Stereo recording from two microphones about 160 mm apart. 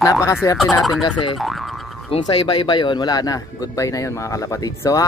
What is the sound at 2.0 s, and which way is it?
Speech, 35° left (ahead or behind).